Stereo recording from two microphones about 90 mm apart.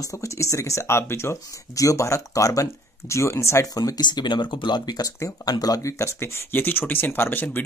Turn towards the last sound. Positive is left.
turn(degrees=20)  # may be behind; listen again after turning